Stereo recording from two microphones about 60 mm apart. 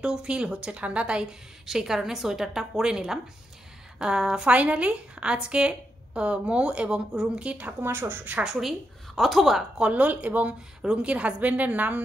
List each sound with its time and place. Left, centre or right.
0.0 s a woman's voice: centre
1.7 s a woman's voice: centre
4.5 s a woman's voice: right
7.8 s a woman's voice: right
8.4 s a woman's voice: centre
9.8 s a woman's voice: centre
10.8 s a woman's voice: centre